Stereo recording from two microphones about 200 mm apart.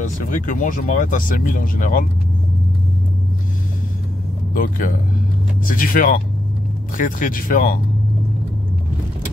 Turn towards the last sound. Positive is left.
turn(degrees=45)  # may be behind; listen again after turning